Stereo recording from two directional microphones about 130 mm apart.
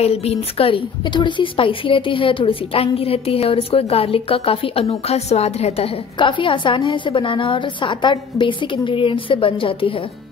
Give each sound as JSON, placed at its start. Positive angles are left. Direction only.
{"t": 0.0, "sound": "a woman's voice", "side_deg": 50}
{"t": 6.1, "sound": "a woman's voice", "side_deg": 40}